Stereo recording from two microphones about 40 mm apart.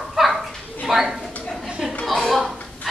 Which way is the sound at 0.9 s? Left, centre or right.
Centre.